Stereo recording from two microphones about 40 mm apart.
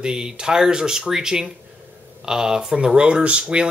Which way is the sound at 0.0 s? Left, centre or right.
Centre.